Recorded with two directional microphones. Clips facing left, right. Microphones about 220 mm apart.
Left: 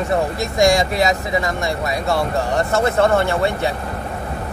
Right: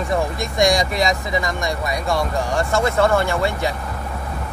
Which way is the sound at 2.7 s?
35° left (ahead or behind).